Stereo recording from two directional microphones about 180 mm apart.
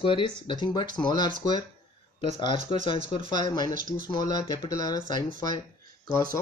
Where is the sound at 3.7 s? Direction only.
50° right (ahead or behind).